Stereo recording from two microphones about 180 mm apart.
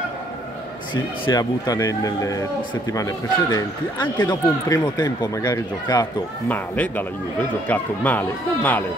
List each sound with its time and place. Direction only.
0.9 s speech: 25° left (ahead or behind)
6.5 s speech: 10° left (ahead or behind)